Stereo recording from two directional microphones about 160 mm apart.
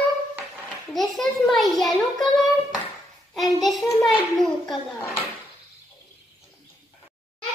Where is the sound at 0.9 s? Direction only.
Centre (ahead or behind).